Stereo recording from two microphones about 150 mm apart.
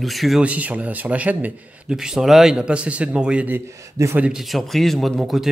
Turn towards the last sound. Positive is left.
turn(degrees=0)  # may be behind; listen again after turning